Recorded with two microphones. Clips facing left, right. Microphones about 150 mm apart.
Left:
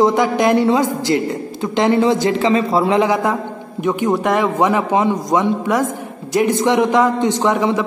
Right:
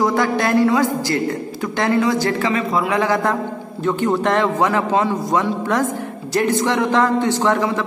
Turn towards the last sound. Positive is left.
turn(degrees=15)  # may be behind; listen again after turning